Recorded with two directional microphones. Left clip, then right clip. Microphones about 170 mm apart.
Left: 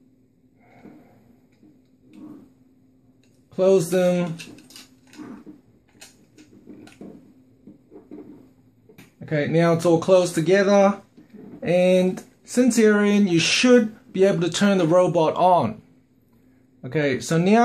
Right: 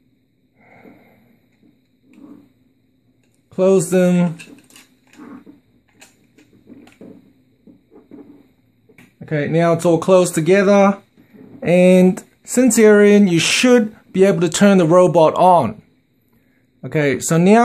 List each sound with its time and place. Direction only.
3.4 s speech: 50° right (ahead or behind)
5.9 s a sound: 5° right (ahead or behind)
9.2 s speech: 40° right (ahead or behind)
16.8 s speech: 45° right (ahead or behind)